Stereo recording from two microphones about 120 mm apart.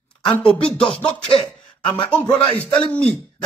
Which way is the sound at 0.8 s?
50° left (ahead or behind).